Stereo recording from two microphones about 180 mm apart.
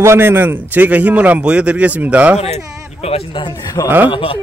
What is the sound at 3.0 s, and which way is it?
A man's voice, 35° left (ahead or behind).